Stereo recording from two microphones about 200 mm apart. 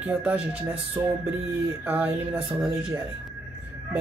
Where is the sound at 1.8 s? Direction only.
10° right (ahead or behind).